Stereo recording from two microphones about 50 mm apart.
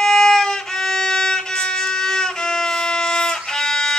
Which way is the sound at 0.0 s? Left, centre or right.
Centre.